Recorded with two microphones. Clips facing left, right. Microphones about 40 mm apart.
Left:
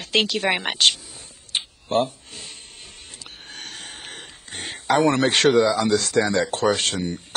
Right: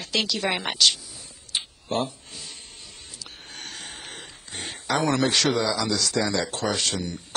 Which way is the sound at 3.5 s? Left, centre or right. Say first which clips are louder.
Left 1 dB; left.